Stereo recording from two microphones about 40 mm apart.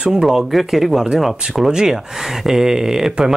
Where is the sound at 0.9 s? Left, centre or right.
Centre.